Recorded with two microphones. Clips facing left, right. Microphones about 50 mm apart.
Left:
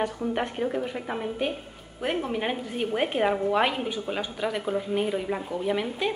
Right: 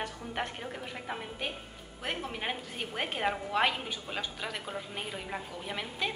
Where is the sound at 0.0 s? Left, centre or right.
Centre.